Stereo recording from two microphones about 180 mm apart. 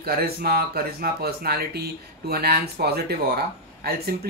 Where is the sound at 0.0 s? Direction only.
60° right (ahead or behind).